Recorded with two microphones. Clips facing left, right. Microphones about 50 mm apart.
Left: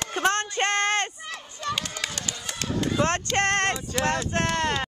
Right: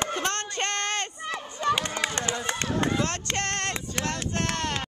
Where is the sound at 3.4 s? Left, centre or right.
Left.